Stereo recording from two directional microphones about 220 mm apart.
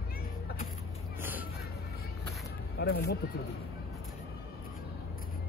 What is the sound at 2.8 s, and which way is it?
Speech, 45° left (ahead or behind).